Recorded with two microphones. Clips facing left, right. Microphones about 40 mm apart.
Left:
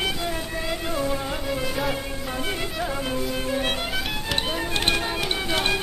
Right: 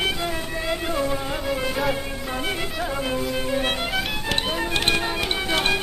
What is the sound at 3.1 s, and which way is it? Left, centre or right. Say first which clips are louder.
Music: right 2 dB; centre.